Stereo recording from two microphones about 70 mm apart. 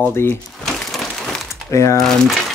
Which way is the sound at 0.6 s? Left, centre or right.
Centre.